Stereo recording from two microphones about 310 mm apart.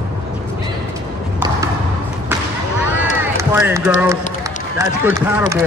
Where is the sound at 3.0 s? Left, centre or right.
Centre.